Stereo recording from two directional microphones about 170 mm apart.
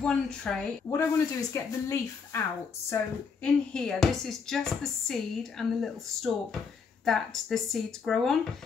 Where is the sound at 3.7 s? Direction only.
5° left (ahead or behind).